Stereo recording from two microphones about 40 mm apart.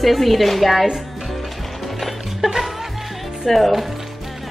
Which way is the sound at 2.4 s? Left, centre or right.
Centre.